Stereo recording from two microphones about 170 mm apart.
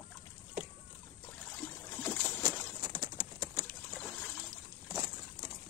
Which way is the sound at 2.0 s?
10° left (ahead or behind).